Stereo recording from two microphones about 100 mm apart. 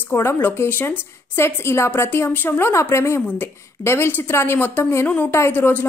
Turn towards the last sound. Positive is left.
turn(degrees=20)  # may be behind; listen again after turning